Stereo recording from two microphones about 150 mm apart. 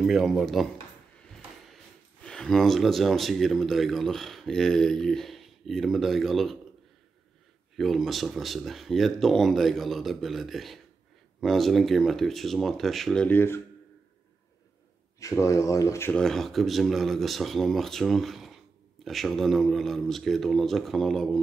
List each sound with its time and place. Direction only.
0.0 s speech: centre (ahead or behind)
2.2 s speech: 5° left (ahead or behind)
7.7 s speech: centre (ahead or behind)
15.1 s speech: 20° left (ahead or behind)
16.1 s speech: 5° left (ahead or behind)